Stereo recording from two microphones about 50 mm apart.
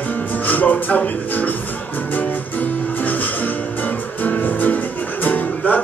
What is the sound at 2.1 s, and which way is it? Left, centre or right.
Music, left.